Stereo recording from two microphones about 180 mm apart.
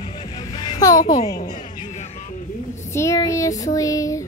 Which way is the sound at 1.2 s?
35° left (ahead or behind).